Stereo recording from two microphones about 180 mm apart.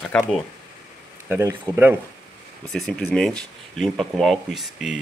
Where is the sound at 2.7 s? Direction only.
5° left (ahead or behind).